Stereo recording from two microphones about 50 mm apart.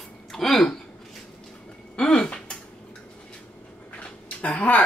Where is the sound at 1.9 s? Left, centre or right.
Centre.